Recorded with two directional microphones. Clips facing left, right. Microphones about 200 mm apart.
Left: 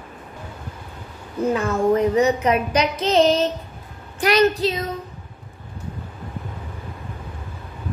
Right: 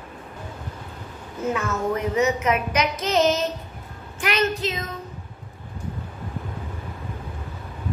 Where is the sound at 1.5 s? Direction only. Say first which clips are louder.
Left 6 dB; 30° left (ahead or behind).